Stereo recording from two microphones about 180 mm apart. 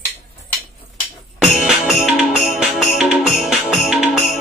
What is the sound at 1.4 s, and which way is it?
Music, centre (ahead or behind).